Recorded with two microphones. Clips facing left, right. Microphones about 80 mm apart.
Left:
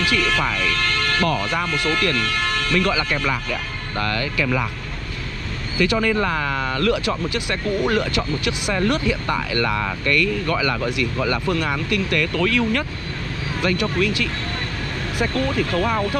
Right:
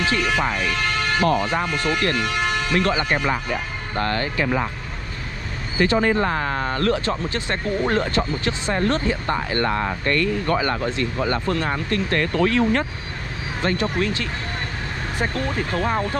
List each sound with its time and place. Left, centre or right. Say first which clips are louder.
0.0 s speech: even; right
2.7 s speech: even; right
5.8 s speech: right 1 dB; right
9.5 s speech: even; right
13.9 s speech: left 2 dB; right
15.3 s speech: left 3 dB; centre